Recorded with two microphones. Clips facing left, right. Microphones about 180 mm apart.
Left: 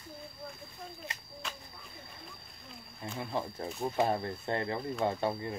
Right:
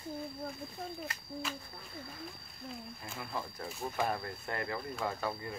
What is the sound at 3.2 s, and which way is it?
Speech, 30° left (ahead or behind).